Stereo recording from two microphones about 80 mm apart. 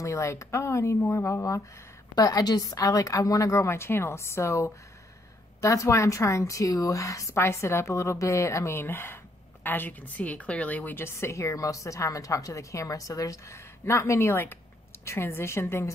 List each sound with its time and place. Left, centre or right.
0.0 s a woman's voice: left
2.1 s a woman's voice: left